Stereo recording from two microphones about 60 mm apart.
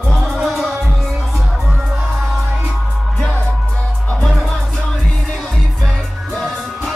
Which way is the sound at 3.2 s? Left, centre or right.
Left.